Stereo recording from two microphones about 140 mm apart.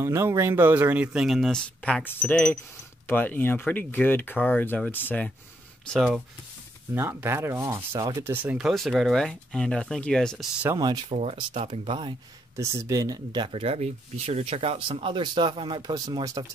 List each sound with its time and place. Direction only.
0.0 s speech: 20° right (ahead or behind); by 6.1 s 5° left (ahead or behind)
6.9 s speech: 15° right (ahead or behind)
8.6 s speech: centre (ahead or behind)
11.1 s speech: 45° right (ahead or behind)
12.5 s speech: 20° right (ahead or behind)